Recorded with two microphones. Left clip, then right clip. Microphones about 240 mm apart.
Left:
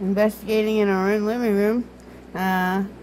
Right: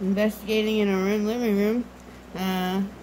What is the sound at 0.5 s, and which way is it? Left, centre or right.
Speech, centre.